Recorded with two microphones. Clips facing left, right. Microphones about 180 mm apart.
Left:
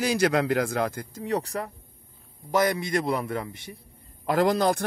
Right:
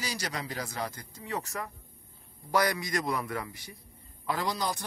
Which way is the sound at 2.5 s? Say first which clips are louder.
Left 5 dB; 25° left (ahead or behind).